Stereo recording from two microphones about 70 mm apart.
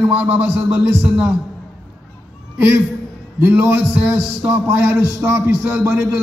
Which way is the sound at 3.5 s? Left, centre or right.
Right.